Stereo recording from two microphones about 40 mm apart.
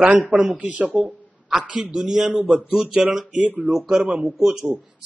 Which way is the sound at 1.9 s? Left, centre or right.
Centre.